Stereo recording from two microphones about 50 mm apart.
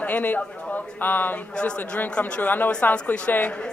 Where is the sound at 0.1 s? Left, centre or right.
Left.